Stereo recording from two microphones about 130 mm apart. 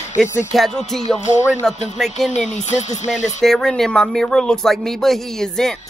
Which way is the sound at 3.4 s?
5° left (ahead or behind).